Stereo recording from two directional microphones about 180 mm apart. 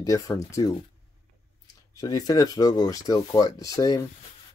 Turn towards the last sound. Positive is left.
turn(degrees=20)  # may be behind; listen again after turning